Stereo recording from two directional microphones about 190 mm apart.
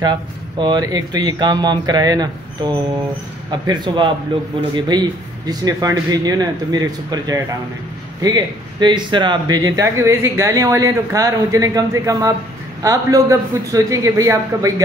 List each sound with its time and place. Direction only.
0.0 s speech: 20° right (ahead or behind)